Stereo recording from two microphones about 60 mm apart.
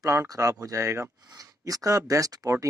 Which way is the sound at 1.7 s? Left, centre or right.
Right.